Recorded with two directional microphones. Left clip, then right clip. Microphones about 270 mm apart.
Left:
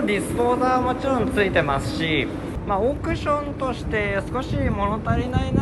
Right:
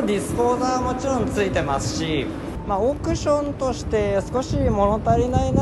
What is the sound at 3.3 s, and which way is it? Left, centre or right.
Speech, centre.